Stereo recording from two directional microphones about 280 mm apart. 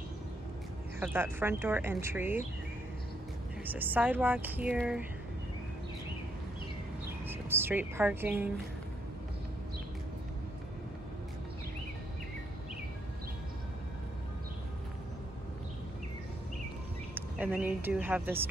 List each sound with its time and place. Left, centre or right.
0.9 s speech: centre
3.6 s speech: centre
7.2 s speech: centre
17.1 s speech: centre